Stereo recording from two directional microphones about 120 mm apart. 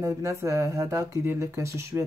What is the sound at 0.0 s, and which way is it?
Speech, 25° right (ahead or behind).